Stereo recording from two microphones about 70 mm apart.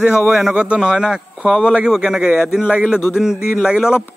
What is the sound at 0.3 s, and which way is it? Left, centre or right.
A man's voice, centre.